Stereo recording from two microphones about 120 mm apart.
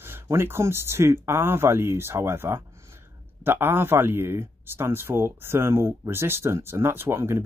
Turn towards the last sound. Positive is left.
turn(degrees=-20)  # may be behind; listen again after turning